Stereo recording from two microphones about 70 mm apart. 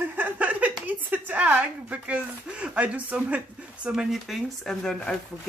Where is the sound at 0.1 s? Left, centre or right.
Right.